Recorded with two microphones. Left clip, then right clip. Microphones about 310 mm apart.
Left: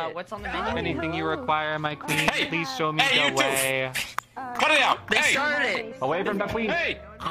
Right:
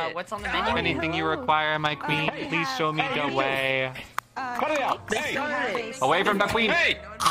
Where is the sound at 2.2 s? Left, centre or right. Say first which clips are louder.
Left 5 dB; left.